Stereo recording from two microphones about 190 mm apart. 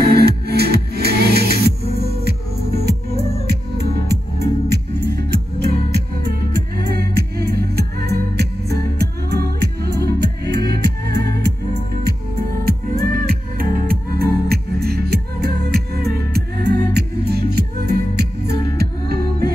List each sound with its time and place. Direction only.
0.1 s music: 55° right (ahead or behind)